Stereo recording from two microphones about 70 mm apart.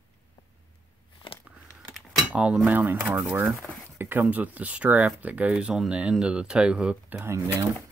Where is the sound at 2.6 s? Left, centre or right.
Right.